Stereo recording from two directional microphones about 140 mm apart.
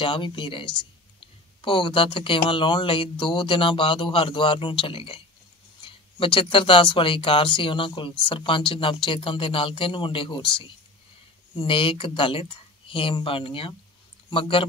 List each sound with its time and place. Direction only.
0.0 s speech: 35° left (ahead or behind)